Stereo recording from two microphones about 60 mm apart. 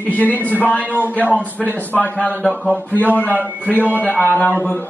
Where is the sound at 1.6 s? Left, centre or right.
Left.